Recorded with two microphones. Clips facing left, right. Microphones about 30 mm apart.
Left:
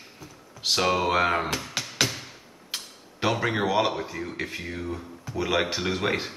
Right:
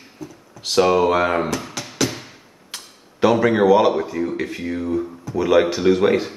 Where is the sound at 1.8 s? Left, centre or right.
Left.